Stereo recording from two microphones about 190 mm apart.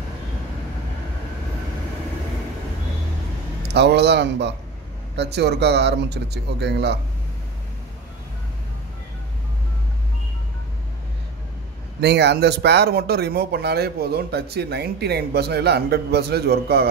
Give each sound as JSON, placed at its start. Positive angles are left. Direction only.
{"t": 3.6, "sound": "speech", "side_deg": -60}
{"t": 12.0, "sound": "speech", "side_deg": -60}